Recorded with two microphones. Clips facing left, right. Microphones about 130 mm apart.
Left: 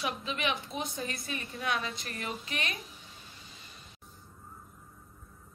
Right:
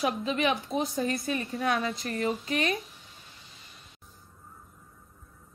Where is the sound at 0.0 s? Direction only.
40° right (ahead or behind).